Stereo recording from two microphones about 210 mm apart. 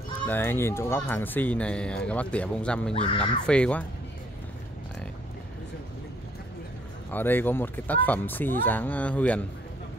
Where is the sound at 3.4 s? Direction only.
5° left (ahead or behind).